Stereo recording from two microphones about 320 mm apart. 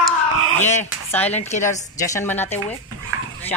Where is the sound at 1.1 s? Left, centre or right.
Centre.